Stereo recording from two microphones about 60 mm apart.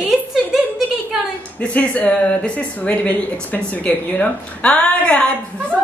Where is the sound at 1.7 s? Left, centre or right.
Left.